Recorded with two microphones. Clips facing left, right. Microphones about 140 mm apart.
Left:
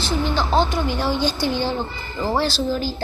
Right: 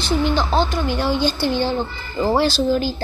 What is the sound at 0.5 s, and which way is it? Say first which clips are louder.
Speech: even; 20° left (ahead or behind).